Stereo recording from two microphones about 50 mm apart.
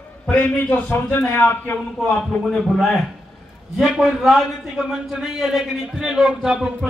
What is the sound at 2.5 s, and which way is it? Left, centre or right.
Speech, centre.